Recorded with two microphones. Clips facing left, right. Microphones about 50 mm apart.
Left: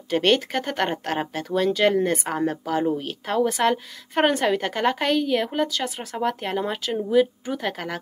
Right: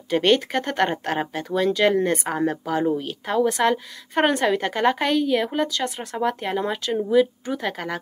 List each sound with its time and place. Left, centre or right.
0.1 s a woman's voice: centre